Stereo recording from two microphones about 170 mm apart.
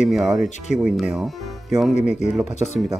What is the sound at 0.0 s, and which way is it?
Speech, centre (ahead or behind).